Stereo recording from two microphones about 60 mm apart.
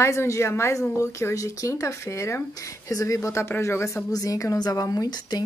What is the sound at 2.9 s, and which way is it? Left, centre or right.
Speech, left.